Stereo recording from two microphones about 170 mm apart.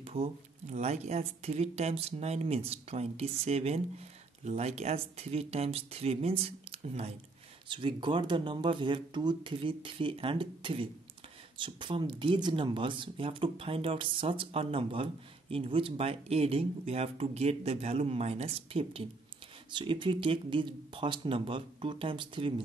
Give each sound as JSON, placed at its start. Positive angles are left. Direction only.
{"t": 0.0, "sound": "speech", "side_deg": -35}